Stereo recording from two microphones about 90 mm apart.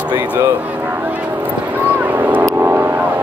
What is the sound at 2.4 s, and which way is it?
Vehicle, 25° right (ahead or behind).